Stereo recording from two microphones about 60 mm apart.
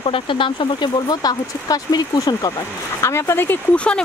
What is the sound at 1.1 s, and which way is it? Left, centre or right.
Speech, left.